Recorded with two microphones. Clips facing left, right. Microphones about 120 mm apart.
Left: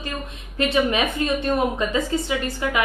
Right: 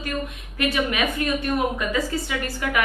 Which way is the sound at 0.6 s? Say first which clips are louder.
Left 3 dB; 25° left (ahead or behind).